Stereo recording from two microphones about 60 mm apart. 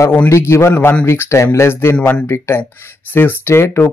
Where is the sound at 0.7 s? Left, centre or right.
Left.